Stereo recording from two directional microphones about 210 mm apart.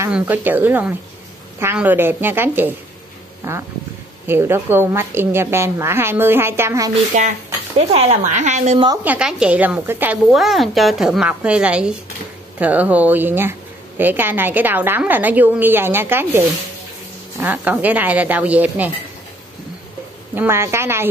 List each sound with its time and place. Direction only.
0.0 s a woman's voice: 10° right (ahead or behind)
7.2 s a woman's voice: 35° right (ahead or behind)
8.8 s a woman's voice: 10° right (ahead or behind)
20.3 s a woman's voice: 10° right (ahead or behind)